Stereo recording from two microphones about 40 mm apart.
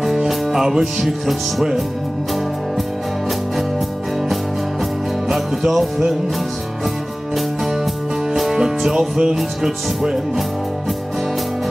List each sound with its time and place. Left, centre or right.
0.3 s music: centre
5.7 s music: centre
8.5 s music: centre